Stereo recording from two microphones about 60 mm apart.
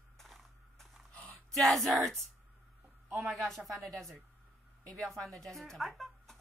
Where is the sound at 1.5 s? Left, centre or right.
Centre.